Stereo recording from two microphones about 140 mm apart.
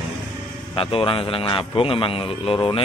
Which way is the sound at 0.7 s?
40° left (ahead or behind).